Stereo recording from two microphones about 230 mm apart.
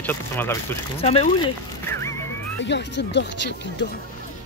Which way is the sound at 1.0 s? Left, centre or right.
Left.